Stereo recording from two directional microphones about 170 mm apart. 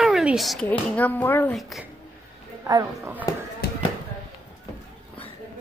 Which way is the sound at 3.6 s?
65° left (ahead or behind).